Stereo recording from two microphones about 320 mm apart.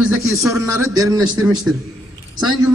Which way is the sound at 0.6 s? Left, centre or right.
Left.